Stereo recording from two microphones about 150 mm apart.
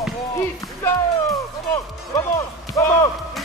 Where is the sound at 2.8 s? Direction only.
20° left (ahead or behind).